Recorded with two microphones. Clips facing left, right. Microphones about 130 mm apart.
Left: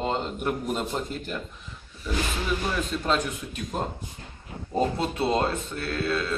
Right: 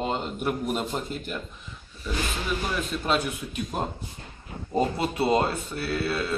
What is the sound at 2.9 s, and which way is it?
Speech, 10° right (ahead or behind).